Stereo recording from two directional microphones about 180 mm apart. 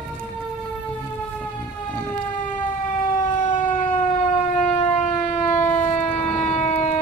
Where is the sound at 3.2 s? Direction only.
45° left (ahead or behind).